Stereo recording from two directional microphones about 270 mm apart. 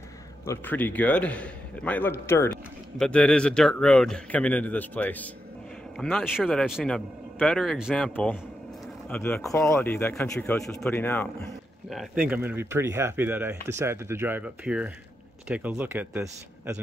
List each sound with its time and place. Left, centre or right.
0.5 s a man's voice: centre